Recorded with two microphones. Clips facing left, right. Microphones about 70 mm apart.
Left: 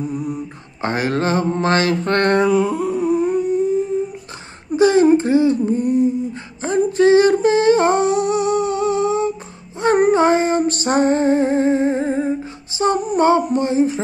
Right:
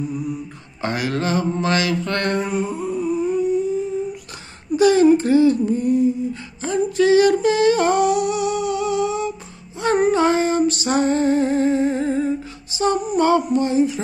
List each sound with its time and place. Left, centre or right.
0.8 s mantra: left
2.3 s a sound: left
4.7 s humming: left
9.8 s female singing: left
13.5 s mantra: left